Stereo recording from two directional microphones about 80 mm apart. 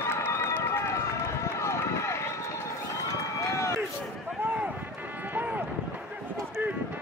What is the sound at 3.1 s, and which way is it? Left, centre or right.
Run, left.